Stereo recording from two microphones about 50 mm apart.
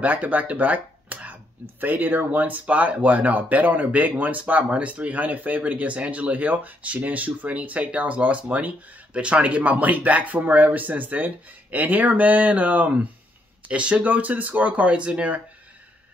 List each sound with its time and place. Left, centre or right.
0.0 s speech: right
2.6 s speech: right